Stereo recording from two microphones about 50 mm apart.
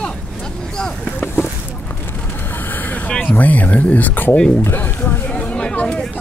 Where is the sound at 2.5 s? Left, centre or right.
Left.